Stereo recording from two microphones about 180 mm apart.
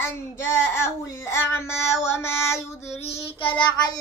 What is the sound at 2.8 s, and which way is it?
Child singing, 35° left (ahead or behind).